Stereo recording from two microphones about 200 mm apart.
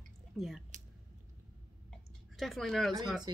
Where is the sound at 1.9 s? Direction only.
Centre (ahead or behind).